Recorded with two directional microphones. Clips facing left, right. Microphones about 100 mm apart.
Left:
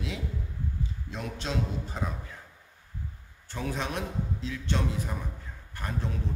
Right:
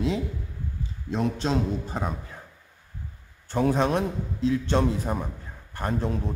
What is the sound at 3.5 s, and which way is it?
A man's voice, 40° right (ahead or behind).